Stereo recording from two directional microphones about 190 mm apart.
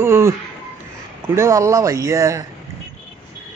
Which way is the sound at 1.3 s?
15° right (ahead or behind).